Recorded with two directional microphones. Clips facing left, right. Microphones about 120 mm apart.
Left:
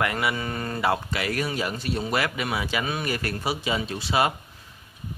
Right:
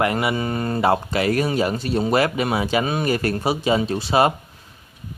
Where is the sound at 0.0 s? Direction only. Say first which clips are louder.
Right 5 dB; 25° right (ahead or behind).